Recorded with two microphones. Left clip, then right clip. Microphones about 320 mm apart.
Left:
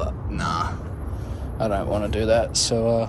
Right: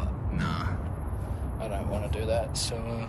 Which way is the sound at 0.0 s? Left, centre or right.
Centre.